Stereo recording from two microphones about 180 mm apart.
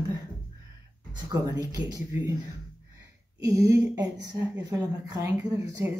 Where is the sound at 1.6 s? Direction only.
20° right (ahead or behind).